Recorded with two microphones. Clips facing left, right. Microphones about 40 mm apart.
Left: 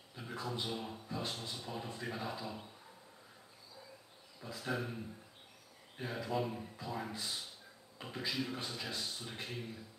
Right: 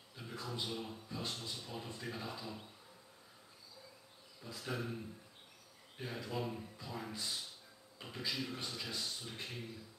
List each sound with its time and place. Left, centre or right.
0.1 s a sound: centre
1.0 s speech: centre
4.4 s speech: centre